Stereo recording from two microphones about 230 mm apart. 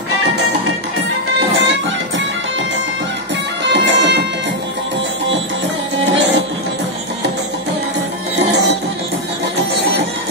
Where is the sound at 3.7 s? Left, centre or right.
Right.